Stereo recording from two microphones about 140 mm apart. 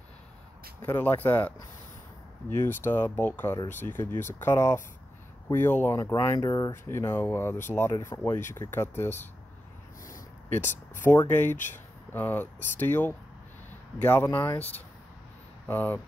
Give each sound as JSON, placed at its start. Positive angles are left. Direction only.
{"t": 0.8, "sound": "speech", "side_deg": 15}
{"t": 2.5, "sound": "speech", "side_deg": 15}
{"t": 6.1, "sound": "speech", "side_deg": 30}
{"t": 10.6, "sound": "speech", "side_deg": 60}
{"t": 12.1, "sound": "speech", "side_deg": 15}